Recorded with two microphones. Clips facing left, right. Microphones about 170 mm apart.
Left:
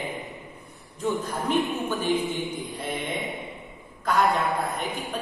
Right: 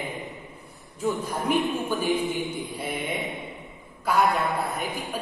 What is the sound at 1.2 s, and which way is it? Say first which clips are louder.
A woman's voice: even; 10° right (ahead or behind).